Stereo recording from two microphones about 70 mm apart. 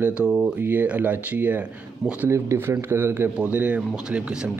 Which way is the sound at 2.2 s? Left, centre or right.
Right.